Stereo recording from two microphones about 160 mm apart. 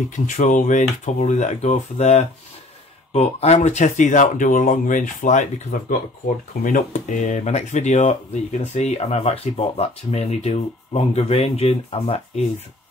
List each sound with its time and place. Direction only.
0.1 s speech: 50° left (ahead or behind)